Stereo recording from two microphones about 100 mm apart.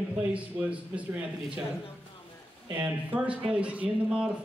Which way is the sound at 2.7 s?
15° right (ahead or behind).